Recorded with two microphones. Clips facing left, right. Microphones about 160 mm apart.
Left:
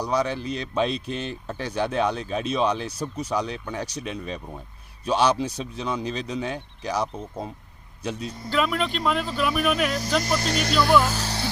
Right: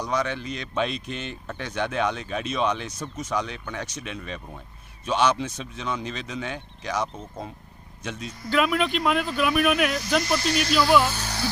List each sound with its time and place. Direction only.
0.0 s speech: 35° left (ahead or behind)
7.2 s speech: 10° left (ahead or behind)
8.0 s speech: 35° left (ahead or behind)
8.5 s speech: 5° right (ahead or behind)
10.2 s speech: 45° left (ahead or behind)
11.1 s speech: 35° left (ahead or behind)